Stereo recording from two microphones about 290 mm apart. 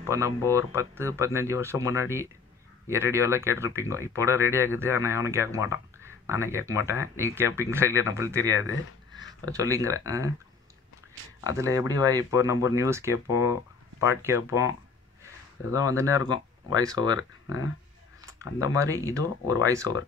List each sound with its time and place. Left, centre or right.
0.0 s speech: centre
11.4 s speech: centre
15.9 s speech: centre
17.2 s speech: left
18.2 s speech: centre